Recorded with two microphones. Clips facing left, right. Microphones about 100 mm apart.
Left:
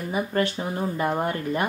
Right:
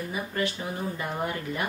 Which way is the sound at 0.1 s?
35° left (ahead or behind).